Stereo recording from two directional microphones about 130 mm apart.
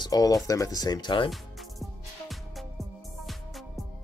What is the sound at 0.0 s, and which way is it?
Speech, 30° left (ahead or behind).